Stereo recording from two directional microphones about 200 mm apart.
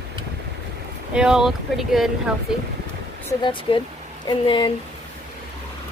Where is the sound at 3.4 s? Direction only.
25° left (ahead or behind).